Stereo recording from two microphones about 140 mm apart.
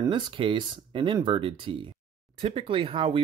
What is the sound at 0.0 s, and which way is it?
Speech, 35° right (ahead or behind).